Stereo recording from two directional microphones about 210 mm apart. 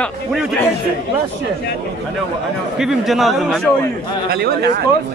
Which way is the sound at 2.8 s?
Centre (ahead or behind).